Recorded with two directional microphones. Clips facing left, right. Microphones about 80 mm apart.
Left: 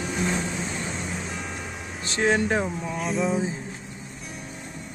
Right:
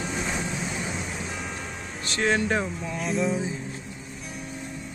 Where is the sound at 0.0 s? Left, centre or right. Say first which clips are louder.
Left 3 dB; centre.